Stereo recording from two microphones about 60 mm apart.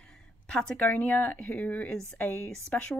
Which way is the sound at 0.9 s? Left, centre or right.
Left.